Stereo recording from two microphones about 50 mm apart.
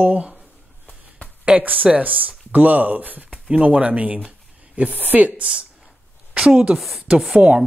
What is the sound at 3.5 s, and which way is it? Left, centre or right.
Speech, right.